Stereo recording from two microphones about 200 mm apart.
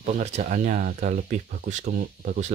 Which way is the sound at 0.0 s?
35° right (ahead or behind).